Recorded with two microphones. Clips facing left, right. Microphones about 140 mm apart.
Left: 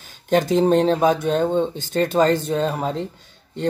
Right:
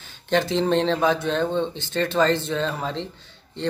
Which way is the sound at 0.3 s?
45° left (ahead or behind).